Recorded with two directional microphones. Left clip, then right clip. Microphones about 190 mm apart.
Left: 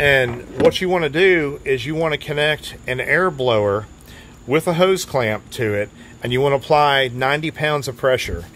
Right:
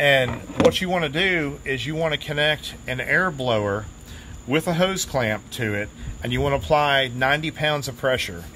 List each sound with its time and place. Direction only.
0.0 s speech: 50° left (ahead or behind)